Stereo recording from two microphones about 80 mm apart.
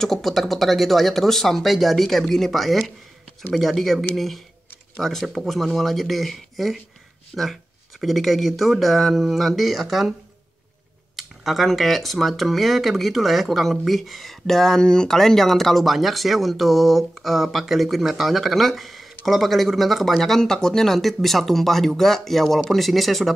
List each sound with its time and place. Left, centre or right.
0.0 s speech: centre
11.1 s speech: centre